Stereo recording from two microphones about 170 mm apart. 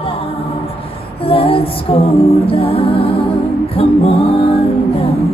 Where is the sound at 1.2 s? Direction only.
35° left (ahead or behind).